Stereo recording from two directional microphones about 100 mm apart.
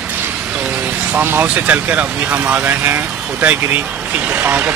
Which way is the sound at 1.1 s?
20° right (ahead or behind).